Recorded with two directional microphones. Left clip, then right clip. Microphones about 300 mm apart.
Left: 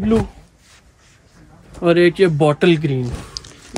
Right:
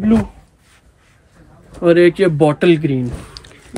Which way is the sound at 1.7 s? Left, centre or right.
Centre.